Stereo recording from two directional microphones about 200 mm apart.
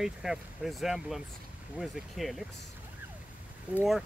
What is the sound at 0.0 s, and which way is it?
Speech, centre (ahead or behind).